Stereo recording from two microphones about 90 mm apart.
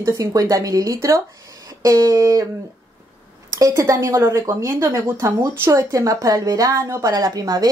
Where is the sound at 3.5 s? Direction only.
40° right (ahead or behind).